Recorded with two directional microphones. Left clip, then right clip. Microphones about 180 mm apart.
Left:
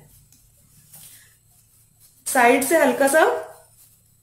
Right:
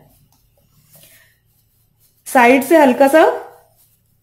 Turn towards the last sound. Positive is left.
turn(degrees=-30)  # may be behind; listen again after turning